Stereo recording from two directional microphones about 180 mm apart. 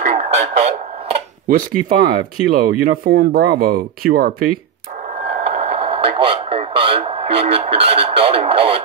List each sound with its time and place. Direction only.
0.0 s radio: 40° right (ahead or behind)
1.5 s speech: 50° right (ahead or behind)
5.4 s radio: 35° right (ahead or behind)